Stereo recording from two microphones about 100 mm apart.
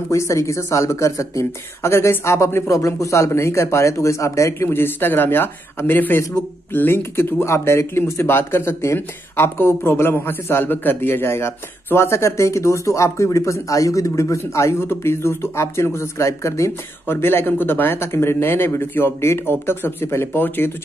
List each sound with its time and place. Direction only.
0.1 s speech: 30° left (ahead or behind)